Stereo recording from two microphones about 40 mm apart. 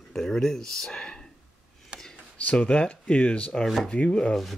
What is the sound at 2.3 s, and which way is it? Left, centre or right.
Speech, left.